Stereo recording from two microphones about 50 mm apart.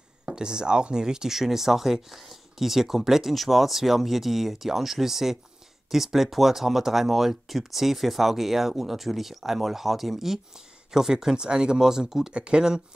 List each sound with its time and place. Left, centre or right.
0.2 s speech: centre